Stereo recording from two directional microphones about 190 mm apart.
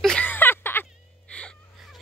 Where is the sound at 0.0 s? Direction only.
5° left (ahead or behind).